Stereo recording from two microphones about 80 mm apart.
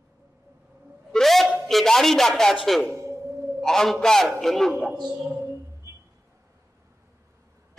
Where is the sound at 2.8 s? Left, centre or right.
Right.